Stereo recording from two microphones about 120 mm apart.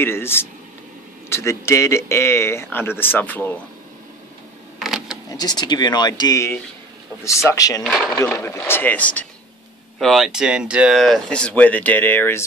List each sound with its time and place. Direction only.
0.0 s a man's voice: 20° left (ahead or behind)
4.7 s a sound: centre (ahead or behind)
5.3 s a man's voice: 35° left (ahead or behind); by 9.2 s 15° left (ahead or behind)
9.9 s speech: centre (ahead or behind); by 12.4 s 20° left (ahead or behind)